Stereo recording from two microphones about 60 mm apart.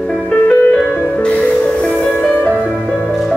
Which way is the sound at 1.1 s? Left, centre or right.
Left.